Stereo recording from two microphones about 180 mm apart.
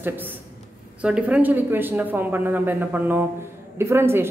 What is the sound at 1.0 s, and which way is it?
Speech, 5° right (ahead or behind).